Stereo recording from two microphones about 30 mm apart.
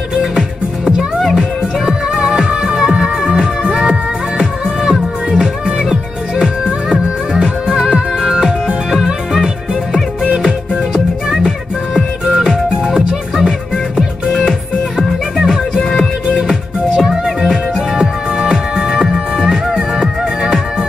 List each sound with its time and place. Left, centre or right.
1.9 s music: right
6.6 s music: right
8.3 s music: centre
11.2 s music: centre
17.4 s music: centre
19.4 s music: centre